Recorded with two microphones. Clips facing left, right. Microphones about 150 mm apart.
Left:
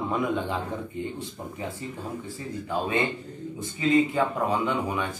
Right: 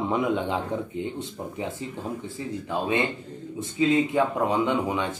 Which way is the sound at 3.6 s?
20° right (ahead or behind).